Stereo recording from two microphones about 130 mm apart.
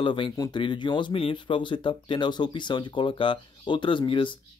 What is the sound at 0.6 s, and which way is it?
Speech, 35° left (ahead or behind).